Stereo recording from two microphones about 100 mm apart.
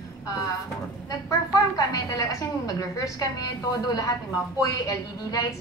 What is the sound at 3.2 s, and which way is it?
A man's voice, 35° left (ahead or behind).